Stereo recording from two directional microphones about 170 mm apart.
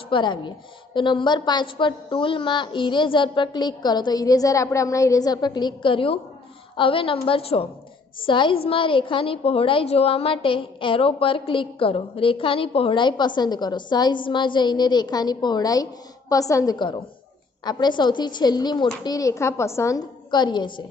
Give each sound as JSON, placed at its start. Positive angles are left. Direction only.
{"t": 0.1, "sound": "a woman's voice", "side_deg": 30}